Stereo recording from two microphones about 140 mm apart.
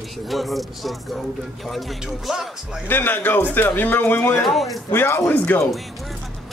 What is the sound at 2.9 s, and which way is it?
Speech, 15° left (ahead or behind).